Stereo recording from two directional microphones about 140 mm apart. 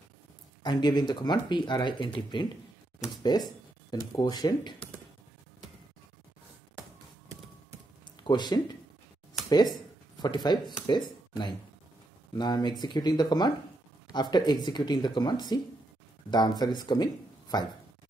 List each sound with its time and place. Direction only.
0.7 s speech: 30° left (ahead or behind)
8.2 s speech: 30° left (ahead or behind)
10.1 s speech: 30° left (ahead or behind)